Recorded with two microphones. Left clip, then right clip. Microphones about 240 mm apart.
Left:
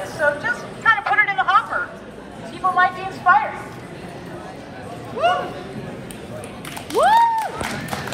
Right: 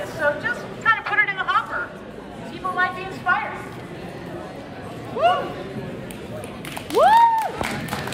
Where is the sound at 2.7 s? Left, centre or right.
Centre.